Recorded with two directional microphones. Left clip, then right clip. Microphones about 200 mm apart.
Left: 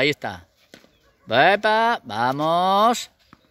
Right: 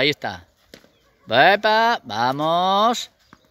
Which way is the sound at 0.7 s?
30° right (ahead or behind).